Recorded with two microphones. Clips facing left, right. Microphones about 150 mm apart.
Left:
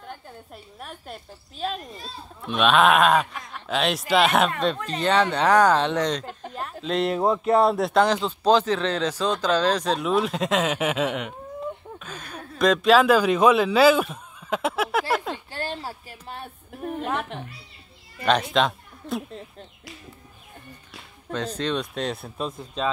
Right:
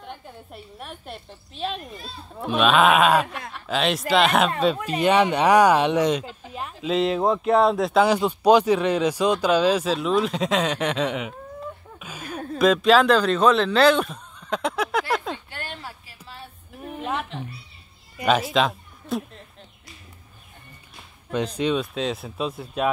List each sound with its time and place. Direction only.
0.0 s a woman's voice: centre (ahead or behind)
4.7 s speech: 10° right (ahead or behind)
12.0 s a sound: 10° right (ahead or behind)
12.5 s speech: centre (ahead or behind)
15.5 s a sound: 35° left (ahead or behind)
18.2 s speech: 5° right (ahead or behind)
21.5 s speech: 5° right (ahead or behind)